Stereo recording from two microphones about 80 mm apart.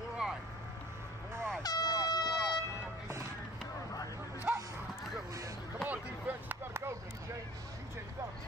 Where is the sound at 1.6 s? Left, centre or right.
Left.